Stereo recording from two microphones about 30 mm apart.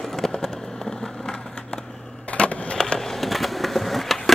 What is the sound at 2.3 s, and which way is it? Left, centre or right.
Skateboard, left.